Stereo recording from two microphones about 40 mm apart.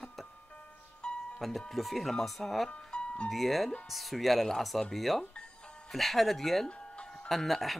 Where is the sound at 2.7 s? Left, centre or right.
Left.